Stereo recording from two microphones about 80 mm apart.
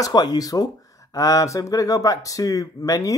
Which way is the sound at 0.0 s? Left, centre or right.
Left.